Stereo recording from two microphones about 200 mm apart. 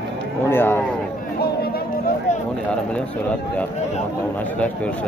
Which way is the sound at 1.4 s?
50° left (ahead or behind).